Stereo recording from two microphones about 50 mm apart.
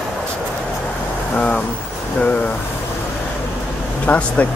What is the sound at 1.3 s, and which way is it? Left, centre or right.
Speech, left.